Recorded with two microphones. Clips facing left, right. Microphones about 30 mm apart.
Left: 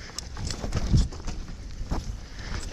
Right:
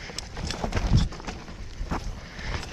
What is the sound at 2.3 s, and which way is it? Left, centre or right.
Vehicle, centre.